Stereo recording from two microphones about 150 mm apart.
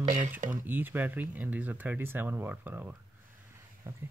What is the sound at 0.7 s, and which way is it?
Speech, 15° right (ahead or behind).